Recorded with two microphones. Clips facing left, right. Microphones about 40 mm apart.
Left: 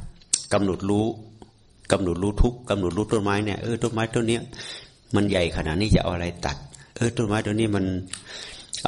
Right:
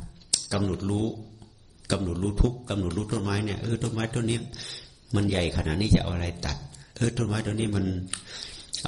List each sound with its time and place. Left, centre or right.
0.3 s speech: left
3.3 s speech: left
3.8 s speech: left
6.4 s a sound: left
7.2 s speech: left
8.3 s a sound: left